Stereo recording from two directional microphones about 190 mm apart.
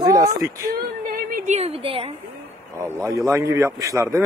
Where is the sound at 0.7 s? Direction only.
50° right (ahead or behind); by 2.1 s 30° right (ahead or behind).